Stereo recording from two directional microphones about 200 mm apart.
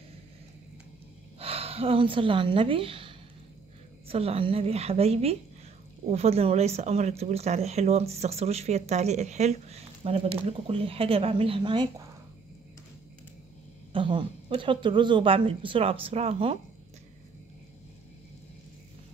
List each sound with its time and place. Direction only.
1.4 s a woman's voice: 30° right (ahead or behind)
13.9 s a woman's voice: 25° right (ahead or behind)